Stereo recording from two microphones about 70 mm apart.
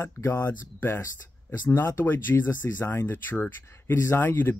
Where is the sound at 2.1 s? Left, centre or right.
Left.